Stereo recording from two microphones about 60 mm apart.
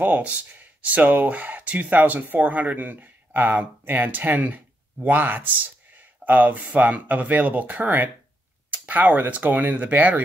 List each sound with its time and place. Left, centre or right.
0.0 s speech: right